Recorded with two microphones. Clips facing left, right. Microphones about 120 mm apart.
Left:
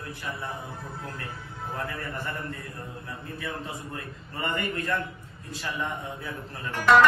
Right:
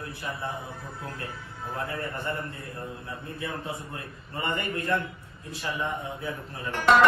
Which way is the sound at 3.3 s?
25° right (ahead or behind).